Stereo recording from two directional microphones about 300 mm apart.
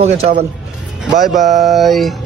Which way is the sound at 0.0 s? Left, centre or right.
Right.